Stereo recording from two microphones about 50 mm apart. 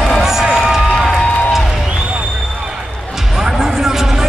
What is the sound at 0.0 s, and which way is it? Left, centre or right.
Music, centre.